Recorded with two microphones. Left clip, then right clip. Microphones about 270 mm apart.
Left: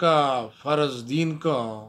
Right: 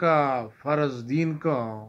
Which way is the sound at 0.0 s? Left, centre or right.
Left.